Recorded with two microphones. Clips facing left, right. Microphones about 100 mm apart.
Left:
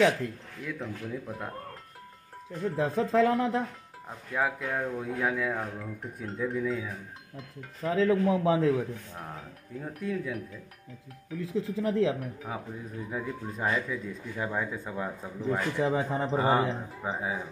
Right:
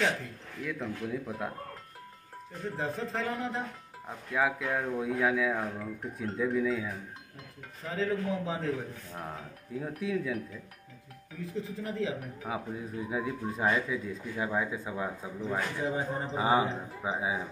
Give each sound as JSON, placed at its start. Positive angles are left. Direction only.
{"t": 0.6, "sound": "speech", "side_deg": 0}
{"t": 3.0, "sound": "a man's voice", "side_deg": 90}
{"t": 4.3, "sound": "speech", "side_deg": 0}
{"t": 7.8, "sound": "a man's voice", "side_deg": 90}
{"t": 9.1, "sound": "speech", "side_deg": 0}
{"t": 11.4, "sound": "a man's voice", "side_deg": 90}
{"t": 12.2, "sound": "speech", "side_deg": -5}
{"t": 15.8, "sound": "a man's voice", "side_deg": 85}
{"t": 16.3, "sound": "speech", "side_deg": -5}